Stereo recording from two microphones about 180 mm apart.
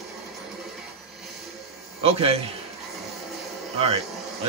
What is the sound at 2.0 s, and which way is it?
Speech, 35° right (ahead or behind).